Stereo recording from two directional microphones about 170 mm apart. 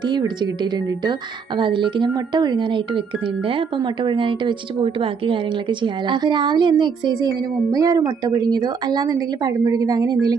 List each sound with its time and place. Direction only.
0.0 s a woman's voice: 25° right (ahead or behind)